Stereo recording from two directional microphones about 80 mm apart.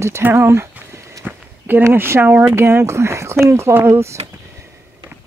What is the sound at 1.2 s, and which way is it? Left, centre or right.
Walk, right.